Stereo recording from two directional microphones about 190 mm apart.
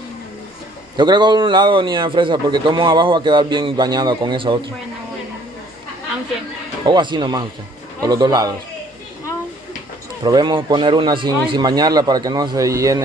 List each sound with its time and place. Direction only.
0.9 s a man's voice: 25° right (ahead or behind)
6.9 s a man's voice: 25° right (ahead or behind)
10.2 s a man's voice: 20° right (ahead or behind)